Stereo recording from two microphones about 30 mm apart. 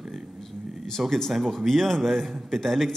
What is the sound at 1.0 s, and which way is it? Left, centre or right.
Speech, centre.